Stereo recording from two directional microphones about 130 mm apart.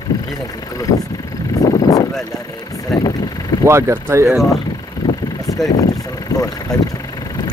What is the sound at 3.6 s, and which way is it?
Speech, 20° right (ahead or behind).